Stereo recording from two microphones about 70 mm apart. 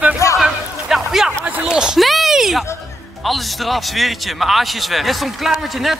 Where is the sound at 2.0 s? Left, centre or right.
Centre.